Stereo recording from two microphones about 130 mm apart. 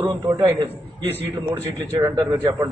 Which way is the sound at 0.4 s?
30° right (ahead or behind).